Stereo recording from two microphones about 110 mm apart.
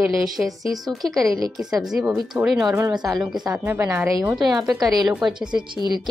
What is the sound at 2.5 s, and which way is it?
Speech, 5° right (ahead or behind).